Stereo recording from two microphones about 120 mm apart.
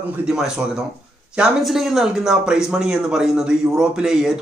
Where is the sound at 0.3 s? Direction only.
5° right (ahead or behind).